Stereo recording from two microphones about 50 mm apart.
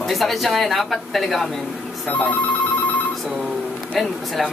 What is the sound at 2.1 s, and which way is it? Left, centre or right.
Speech, left.